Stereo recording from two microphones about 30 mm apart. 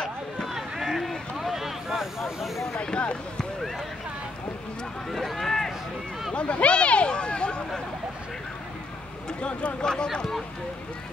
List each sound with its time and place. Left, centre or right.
0.6 s run: centre
1.0 s a sound: centre
2.7 s speech: left
5.1 s speech: centre
6.3 s speech: left
9.4 s speech: left
9.8 s speech: left